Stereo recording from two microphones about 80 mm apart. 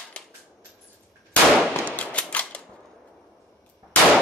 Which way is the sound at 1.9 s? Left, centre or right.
Centre.